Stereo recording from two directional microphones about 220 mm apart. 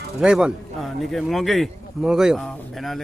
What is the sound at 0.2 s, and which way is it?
A man's voice, centre (ahead or behind).